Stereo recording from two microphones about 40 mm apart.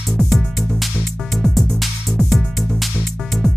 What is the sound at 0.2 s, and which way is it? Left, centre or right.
Music, centre.